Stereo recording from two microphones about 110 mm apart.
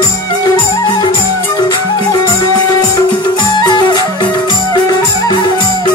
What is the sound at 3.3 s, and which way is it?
Music, 40° left (ahead or behind).